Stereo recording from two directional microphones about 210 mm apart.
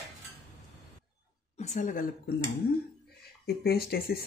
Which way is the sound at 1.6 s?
35° left (ahead or behind).